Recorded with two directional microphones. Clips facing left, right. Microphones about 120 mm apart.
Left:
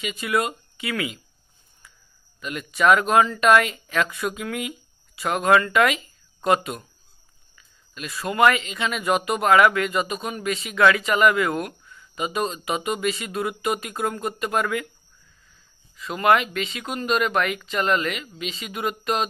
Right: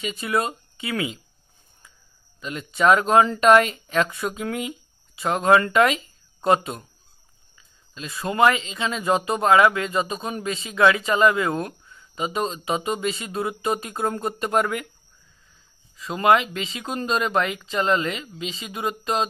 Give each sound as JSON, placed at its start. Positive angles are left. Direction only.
{"t": 0.0, "sound": "speech", "side_deg": -30}
{"t": 2.4, "sound": "speech", "side_deg": -25}
{"t": 16.0, "sound": "speech", "side_deg": -25}